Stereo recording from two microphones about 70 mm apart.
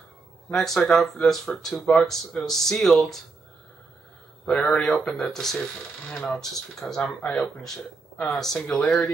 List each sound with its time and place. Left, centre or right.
0.5 s speech: centre
4.5 s speech: centre
6.8 s speech: centre
7.2 s speech: centre